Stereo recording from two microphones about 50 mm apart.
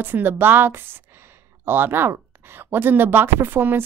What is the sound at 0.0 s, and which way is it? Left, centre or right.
Speech, right.